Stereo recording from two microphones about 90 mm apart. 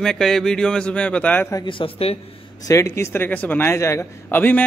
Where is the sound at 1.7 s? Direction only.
80° left.